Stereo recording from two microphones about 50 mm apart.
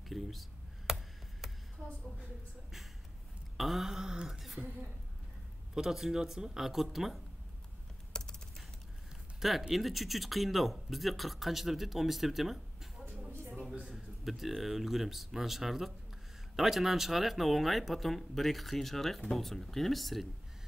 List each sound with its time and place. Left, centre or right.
0.1 s computer keyboard: centre
3.5 s speech: centre
5.8 s speech: centre
8.1 s typing: centre
9.4 s speech: centre
13.7 s a sound: centre
13.9 s speech: centre